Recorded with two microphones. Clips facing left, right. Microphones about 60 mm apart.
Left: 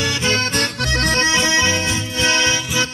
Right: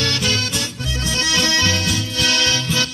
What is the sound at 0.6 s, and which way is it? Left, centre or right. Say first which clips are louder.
Accordion: left 6 dB; left.